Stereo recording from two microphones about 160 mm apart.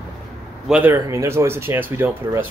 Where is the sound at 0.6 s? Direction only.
10° right (ahead or behind).